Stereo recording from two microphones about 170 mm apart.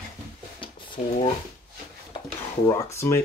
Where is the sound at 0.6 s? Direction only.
30° left (ahead or behind).